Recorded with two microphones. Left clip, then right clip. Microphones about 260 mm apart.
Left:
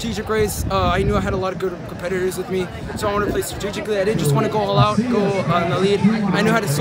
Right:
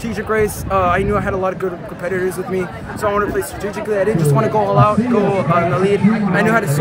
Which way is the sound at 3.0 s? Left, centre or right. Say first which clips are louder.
Right 3 dB; centre.